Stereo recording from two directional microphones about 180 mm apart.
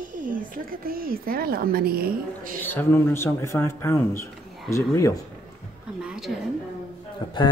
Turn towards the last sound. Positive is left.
turn(degrees=25)  # may be behind; listen again after turning